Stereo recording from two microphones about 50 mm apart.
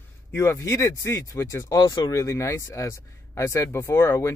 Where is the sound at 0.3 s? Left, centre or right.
Left.